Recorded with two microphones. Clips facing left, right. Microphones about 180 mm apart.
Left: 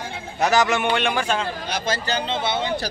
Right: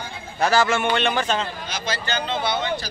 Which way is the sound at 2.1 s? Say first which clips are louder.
Right 2 dB; 30° left (ahead or behind).